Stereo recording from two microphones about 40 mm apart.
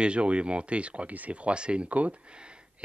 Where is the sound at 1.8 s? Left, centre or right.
Right.